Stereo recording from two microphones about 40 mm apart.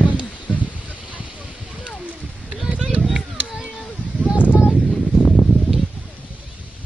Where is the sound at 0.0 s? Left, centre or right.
Left.